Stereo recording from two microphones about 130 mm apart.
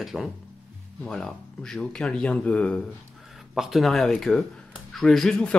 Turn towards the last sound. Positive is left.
turn(degrees=5)  # may be behind; listen again after turning